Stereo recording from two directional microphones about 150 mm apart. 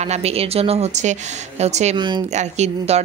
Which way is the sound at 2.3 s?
50° right (ahead or behind).